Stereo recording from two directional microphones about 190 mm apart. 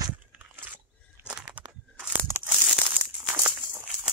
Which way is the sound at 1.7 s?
10° right (ahead or behind).